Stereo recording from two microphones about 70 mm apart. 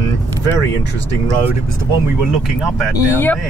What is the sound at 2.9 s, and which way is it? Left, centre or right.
Speech, left.